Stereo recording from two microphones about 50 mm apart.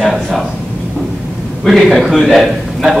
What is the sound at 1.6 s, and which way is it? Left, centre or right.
A man's voice, centre.